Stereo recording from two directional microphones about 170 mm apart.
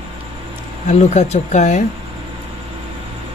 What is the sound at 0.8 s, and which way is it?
Speech, 40° left (ahead or behind).